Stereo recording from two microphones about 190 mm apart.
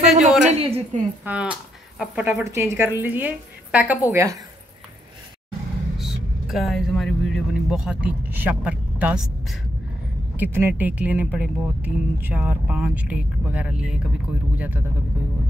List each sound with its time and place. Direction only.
0.0 s a sound: 35° right (ahead or behind)
0.6 s a woman's voice: 30° right (ahead or behind)
1.2 s speech: 5° right (ahead or behind)
5.9 s speech: centre (ahead or behind)